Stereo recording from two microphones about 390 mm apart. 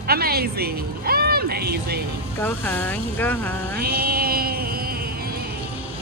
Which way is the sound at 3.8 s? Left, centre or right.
Right.